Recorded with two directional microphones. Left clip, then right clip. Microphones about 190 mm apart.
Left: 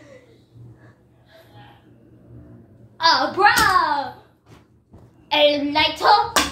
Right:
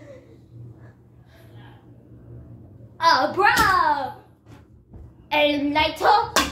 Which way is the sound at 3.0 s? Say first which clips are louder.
Left 1 dB; 15° left (ahead or behind).